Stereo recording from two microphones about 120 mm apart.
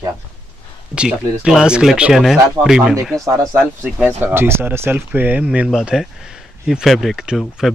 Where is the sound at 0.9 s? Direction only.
5° right (ahead or behind).